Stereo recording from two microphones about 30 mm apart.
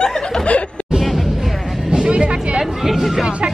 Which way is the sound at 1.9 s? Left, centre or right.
Right.